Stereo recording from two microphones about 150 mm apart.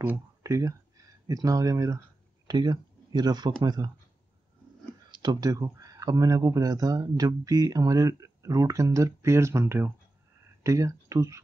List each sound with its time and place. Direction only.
0.0 s speech: 15° right (ahead or behind)
5.1 s speech: 30° right (ahead or behind)